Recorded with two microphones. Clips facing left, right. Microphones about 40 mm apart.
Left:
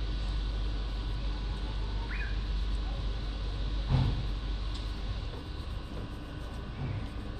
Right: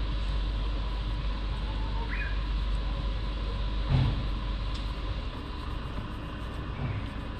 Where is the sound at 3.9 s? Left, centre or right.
Right.